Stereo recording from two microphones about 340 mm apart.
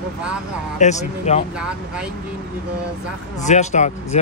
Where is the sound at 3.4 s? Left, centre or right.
Left.